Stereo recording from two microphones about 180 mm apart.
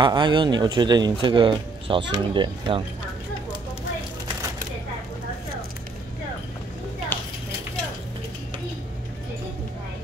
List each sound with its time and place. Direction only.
0.0 s speech: 25° right (ahead or behind)